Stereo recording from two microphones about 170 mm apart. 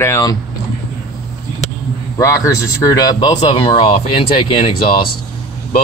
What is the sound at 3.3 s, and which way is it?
Speech, 35° left (ahead or behind).